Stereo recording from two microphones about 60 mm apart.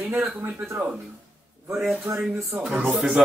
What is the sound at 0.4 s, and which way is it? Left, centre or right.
Speech, right.